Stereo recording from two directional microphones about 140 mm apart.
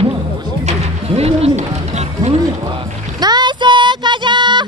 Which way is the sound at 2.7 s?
30° right (ahead or behind).